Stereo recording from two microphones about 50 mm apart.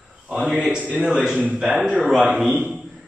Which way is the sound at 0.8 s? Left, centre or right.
Right.